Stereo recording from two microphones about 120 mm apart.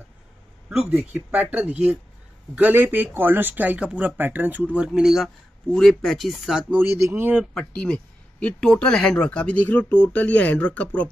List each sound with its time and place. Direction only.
1.3 s speech: 10° right (ahead or behind)
6.7 s speech: 15° right (ahead or behind)
7.5 s speech: 10° left (ahead or behind)